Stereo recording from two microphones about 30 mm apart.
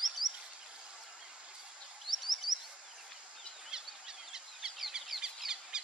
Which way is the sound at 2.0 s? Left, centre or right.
Centre.